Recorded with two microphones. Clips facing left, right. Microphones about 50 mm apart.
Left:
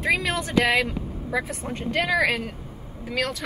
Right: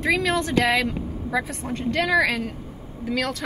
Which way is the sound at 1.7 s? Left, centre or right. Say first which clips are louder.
Right 3 dB; centre.